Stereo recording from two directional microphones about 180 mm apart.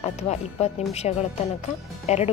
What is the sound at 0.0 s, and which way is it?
Speech, 35° left (ahead or behind).